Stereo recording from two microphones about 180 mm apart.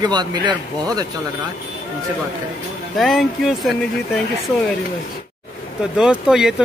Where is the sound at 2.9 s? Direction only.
Centre (ahead or behind).